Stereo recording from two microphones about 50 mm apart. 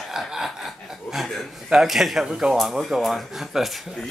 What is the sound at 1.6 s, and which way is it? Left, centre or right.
Speech, centre.